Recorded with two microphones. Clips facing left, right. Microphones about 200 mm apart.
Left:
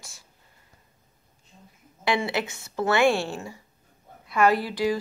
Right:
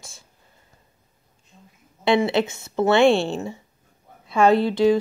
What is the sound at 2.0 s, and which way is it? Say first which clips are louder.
Speech: right 7 dB; 25° right (ahead or behind).